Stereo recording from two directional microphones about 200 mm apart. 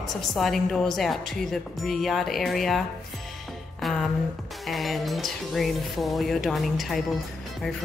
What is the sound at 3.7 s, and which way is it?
Music, centre (ahead or behind).